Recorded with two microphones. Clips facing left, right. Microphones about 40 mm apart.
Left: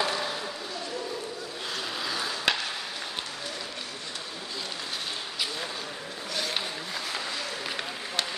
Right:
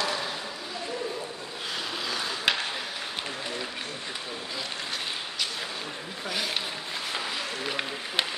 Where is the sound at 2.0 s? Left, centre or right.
Centre.